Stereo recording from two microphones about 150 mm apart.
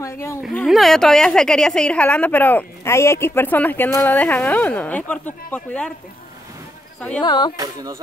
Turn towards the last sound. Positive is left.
turn(degrees=-25)  # may be behind; listen again after turning